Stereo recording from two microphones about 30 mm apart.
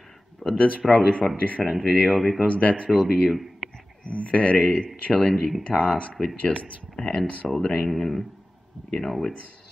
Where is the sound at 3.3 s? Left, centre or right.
Centre.